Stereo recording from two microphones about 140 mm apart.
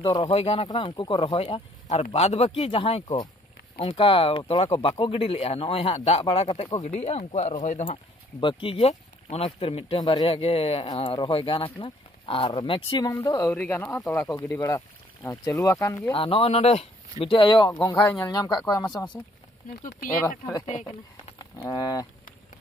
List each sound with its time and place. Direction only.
0.0 s speech: 35° left (ahead or behind)
6.8 s speech: 55° left (ahead or behind)
7.8 s speech: 40° left (ahead or behind)
9.9 s speech: 30° left (ahead or behind)
10.2 s speech: 45° left (ahead or behind)
13.1 s speech: 25° left (ahead or behind)
13.5 s speech: 15° left (ahead or behind)
16.1 s speech: 40° left (ahead or behind)
17.2 s speech: 35° left (ahead or behind); by 19.1 s 20° left (ahead or behind)
20.6 s speech: 50° left (ahead or behind)